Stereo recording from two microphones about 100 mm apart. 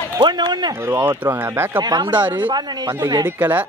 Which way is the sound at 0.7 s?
25° right (ahead or behind).